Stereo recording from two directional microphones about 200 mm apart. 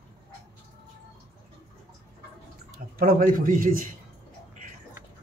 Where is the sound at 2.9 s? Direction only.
45° right (ahead or behind).